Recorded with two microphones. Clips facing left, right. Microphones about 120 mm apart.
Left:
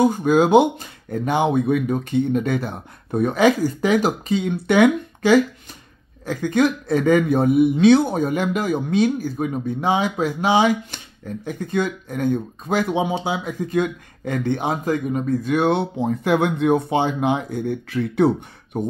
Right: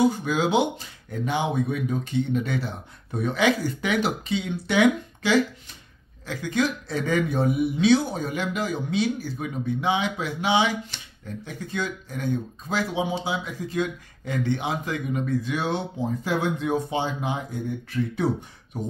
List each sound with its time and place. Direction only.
0.0 s speech: 50° left (ahead or behind); by 18.8 s 65° left (ahead or behind)